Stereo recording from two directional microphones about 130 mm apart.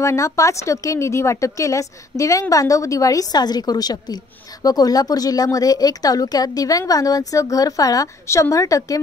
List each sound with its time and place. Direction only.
0.0 s speech: 25° left (ahead or behind)